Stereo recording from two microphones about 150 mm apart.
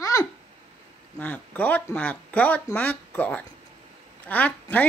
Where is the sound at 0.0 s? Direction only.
20° left (ahead or behind).